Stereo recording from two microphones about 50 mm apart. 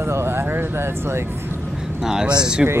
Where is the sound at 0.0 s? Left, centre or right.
Right.